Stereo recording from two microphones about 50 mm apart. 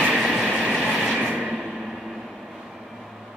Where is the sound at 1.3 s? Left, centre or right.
Centre.